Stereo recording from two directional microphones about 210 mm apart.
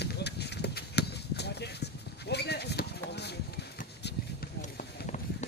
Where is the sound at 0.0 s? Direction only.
50° left (ahead or behind).